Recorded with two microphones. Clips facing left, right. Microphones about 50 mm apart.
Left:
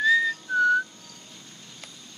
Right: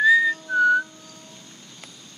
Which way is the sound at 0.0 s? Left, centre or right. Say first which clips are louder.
Right 4 dB; centre.